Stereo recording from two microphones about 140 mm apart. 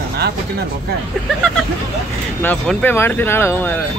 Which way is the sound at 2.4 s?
15° left (ahead or behind).